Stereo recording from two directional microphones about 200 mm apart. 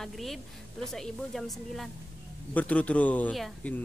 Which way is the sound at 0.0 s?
Centre (ahead or behind).